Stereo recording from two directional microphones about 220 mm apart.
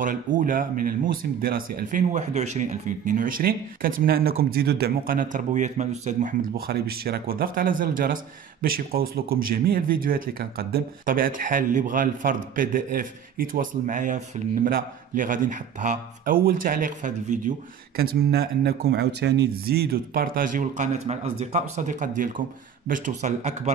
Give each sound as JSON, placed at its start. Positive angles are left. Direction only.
{"t": 0.0, "sound": "speech", "side_deg": -35}